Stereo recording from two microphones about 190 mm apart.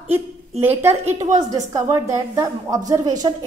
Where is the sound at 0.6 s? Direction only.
10° right (ahead or behind).